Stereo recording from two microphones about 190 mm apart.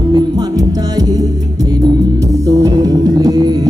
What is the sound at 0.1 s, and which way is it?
Music, 20° right (ahead or behind).